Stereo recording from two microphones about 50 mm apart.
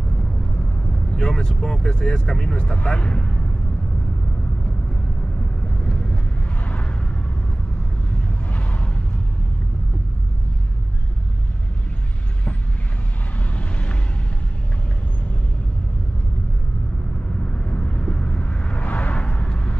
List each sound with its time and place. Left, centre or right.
1.1 s speech: centre
5.9 s vehicle: centre
6.7 s a sound: left
8.1 s vehicle: left
13.6 s vehicle: left
17.5 s vehicle: left